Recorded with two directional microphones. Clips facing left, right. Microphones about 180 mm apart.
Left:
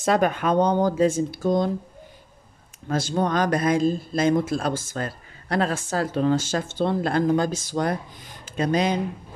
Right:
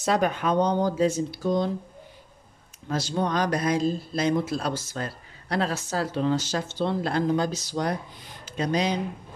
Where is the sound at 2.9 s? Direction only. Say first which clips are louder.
Left 3 dB; 50° left (ahead or behind).